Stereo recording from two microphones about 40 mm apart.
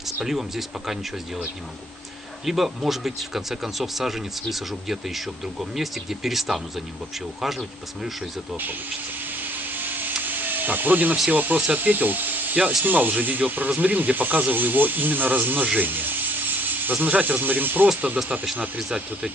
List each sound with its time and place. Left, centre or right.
0.2 s speech: centre
2.4 s speech: centre
9.4 s a sound: right
11.5 s speech: right
15.8 s ratchet: right
16.9 s speech: right
17.4 s speech: right
18.0 s speech: right